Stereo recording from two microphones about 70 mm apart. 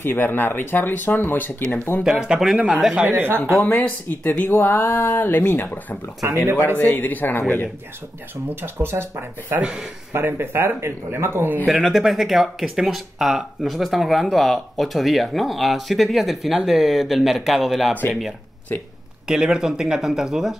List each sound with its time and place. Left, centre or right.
0.0 s speech: left
2.0 s speech: centre
3.1 s speech: right
3.6 s speech: left
4.5 s speech: left
6.2 s speech: right
6.8 s speech: left
8.5 s speech: right
9.6 s speech: centre
10.1 s speech: right
11.6 s speech: centre
19.2 s speech: centre